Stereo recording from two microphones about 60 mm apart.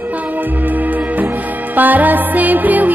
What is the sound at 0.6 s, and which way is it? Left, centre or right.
Music, right.